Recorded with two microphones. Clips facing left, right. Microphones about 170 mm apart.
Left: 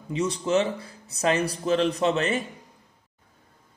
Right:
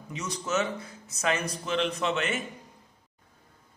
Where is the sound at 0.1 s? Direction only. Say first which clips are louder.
Left 7 dB; 30° left (ahead or behind).